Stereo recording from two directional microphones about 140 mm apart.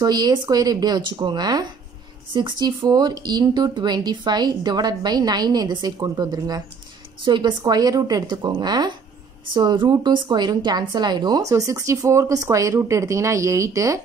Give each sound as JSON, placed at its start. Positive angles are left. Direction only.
{"t": 0.0, "sound": "a woman's voice", "side_deg": -30}